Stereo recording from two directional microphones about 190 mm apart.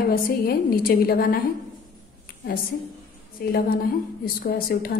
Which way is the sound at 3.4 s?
50° left (ahead or behind).